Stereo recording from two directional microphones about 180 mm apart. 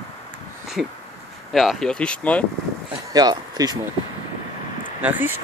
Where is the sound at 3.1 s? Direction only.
20° right (ahead or behind).